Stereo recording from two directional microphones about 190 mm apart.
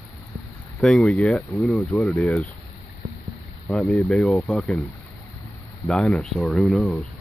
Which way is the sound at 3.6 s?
5° left (ahead or behind).